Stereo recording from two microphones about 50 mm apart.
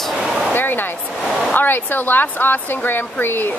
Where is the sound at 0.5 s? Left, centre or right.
Left.